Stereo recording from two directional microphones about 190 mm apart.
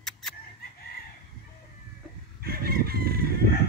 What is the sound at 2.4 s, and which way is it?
Chicken, 50° right (ahead or behind).